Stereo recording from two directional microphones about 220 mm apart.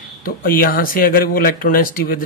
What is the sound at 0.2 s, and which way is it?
Speech, 40° left (ahead or behind).